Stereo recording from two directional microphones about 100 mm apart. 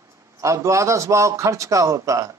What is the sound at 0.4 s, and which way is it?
A man's voice, 30° right (ahead or behind).